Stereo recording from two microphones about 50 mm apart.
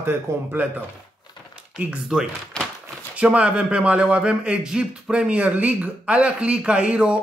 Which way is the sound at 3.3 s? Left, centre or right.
Right.